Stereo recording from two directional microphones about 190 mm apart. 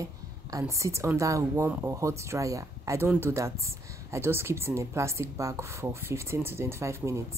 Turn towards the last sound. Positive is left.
turn(degrees=-15)  # may be behind; listen again after turning